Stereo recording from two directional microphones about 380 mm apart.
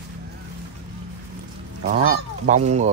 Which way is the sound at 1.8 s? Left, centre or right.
Right.